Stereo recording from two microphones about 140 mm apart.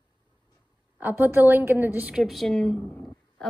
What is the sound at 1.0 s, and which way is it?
A woman's voice, 15° right (ahead or behind).